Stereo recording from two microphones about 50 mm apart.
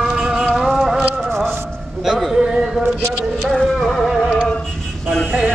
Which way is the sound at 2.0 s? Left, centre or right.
Centre.